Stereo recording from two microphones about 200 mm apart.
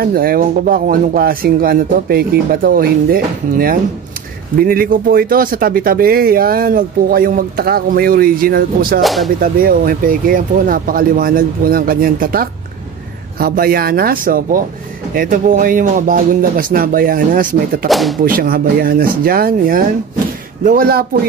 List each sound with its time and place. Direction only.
0.0 s speech: 45° right (ahead or behind)
9.0 s speech: centre (ahead or behind)
9.4 s speech: 45° right (ahead or behind)
17.8 s speech: centre (ahead or behind)
18.2 s speech: 45° right (ahead or behind)